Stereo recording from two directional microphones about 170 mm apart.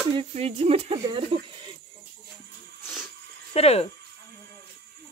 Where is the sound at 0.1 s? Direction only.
35° right (ahead or behind).